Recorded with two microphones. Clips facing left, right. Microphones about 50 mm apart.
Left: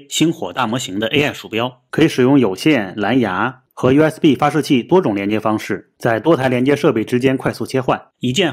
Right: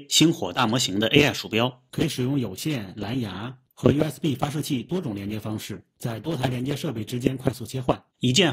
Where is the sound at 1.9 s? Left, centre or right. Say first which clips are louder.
Left 14 dB; left.